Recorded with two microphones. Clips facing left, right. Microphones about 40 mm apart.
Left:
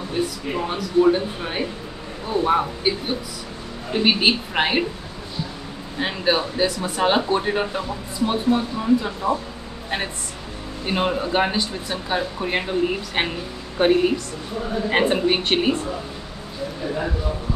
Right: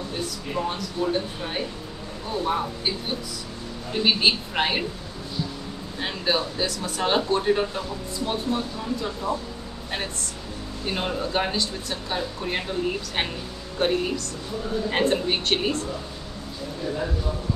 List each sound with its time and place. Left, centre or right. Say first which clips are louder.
0.1 s speech: left 7 dB; left
3.9 s speech: left 3 dB; centre
5.9 s speech: left 4 dB; centre
10.9 s speech: left 5 dB; left